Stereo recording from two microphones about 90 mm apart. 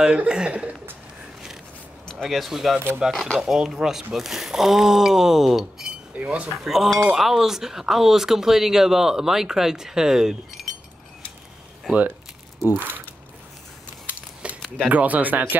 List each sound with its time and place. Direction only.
0.0 s speech: 10° right (ahead or behind)
2.0 s speech: centre (ahead or behind)
6.1 s speech: 15° right (ahead or behind)
11.9 s speech: centre (ahead or behind)
12.7 s speech: 20° right (ahead or behind)
14.4 s a sound: 10° right (ahead or behind)
14.9 s speech: 15° right (ahead or behind)